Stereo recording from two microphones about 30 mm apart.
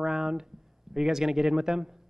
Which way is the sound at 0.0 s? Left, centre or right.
Centre.